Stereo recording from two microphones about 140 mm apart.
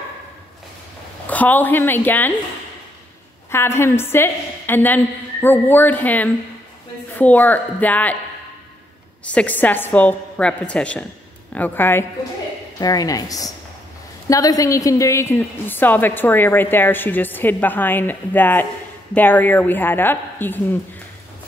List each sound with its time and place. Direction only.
1.3 s a woman's voice: 10° left (ahead or behind)
3.5 s a woman's voice: 15° left (ahead or behind)
9.2 s a woman's voice: 10° left (ahead or behind)
12.7 s a woman's voice: 25° left (ahead or behind)